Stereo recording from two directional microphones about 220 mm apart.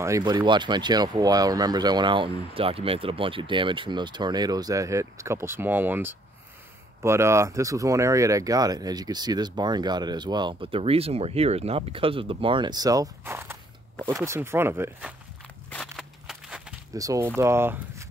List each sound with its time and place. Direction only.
0.0 s speech: 15° right (ahead or behind)
15.7 s a sound: centre (ahead or behind)
16.9 s speech: 15° right (ahead or behind)